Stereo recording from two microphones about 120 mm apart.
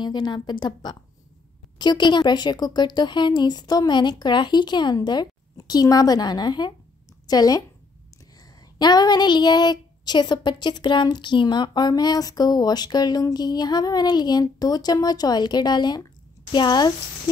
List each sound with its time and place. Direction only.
0.0 s speech: 40° left (ahead or behind)